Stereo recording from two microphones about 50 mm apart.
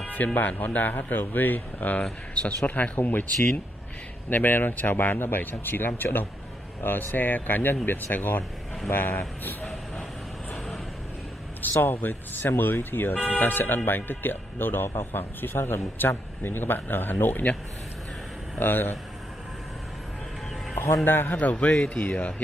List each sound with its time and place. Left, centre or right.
0.0 s speech: left
4.3 s speech: left
11.8 s speech: left
13.1 s speech: left
18.6 s speech: left
21.0 s a man's voice: left